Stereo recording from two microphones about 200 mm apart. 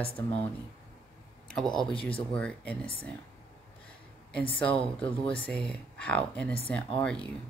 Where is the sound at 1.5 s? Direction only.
Centre (ahead or behind).